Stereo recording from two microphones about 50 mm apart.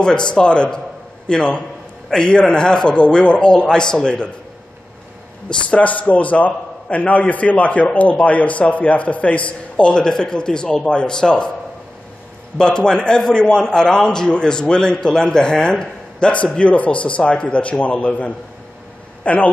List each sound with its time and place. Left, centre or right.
0.0 s a man's voice: centre
5.5 s a man's voice: left
12.5 s a man's voice: centre